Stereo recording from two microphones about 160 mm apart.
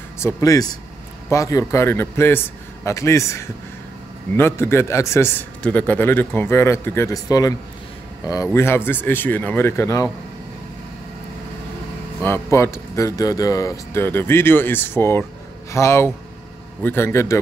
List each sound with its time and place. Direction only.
0.2 s a man's voice: 20° left (ahead or behind)
12.2 s a man's voice: 15° left (ahead or behind)